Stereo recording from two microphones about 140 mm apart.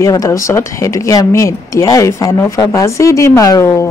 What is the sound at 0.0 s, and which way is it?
Speech, 25° left (ahead or behind).